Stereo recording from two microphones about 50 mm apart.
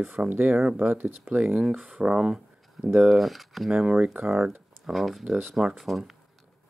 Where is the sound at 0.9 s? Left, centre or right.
Right.